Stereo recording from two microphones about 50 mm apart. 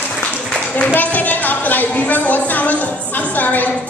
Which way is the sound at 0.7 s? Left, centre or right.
Left.